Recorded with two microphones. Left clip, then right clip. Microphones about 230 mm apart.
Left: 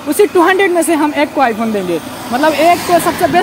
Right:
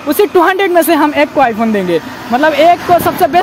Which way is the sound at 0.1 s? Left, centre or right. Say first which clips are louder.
Right 1 dB; right.